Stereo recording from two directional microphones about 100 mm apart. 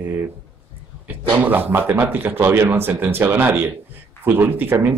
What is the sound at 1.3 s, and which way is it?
Speech, 20° right (ahead or behind).